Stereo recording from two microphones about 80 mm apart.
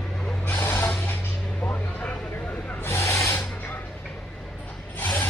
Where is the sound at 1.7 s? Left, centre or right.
Left.